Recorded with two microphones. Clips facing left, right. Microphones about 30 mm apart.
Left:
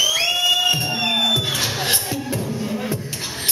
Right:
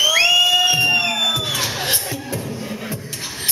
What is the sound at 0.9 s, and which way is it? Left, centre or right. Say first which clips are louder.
Music: right 2 dB; right.